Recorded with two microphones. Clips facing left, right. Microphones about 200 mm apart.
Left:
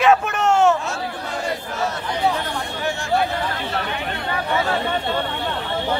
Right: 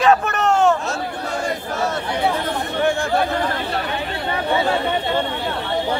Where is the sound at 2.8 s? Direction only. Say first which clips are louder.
Right 9 dB; 55° right (ahead or behind).